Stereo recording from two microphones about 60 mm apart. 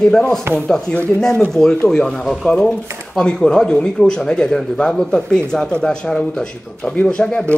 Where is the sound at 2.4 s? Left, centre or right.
Centre.